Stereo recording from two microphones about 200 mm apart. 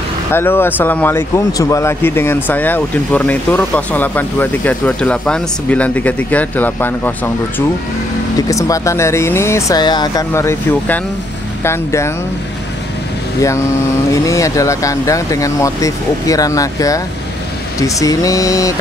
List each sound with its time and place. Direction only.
0.3 s speech: 10° left (ahead or behind)
14.1 s speech: 15° left (ahead or behind)